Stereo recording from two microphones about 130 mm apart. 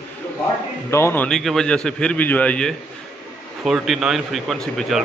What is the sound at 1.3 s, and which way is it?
A man's voice, 5° left (ahead or behind).